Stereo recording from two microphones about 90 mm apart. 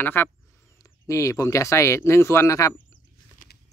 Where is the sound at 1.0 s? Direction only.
35° left (ahead or behind).